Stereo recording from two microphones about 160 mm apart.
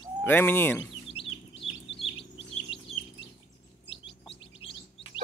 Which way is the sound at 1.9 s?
35° left (ahead or behind).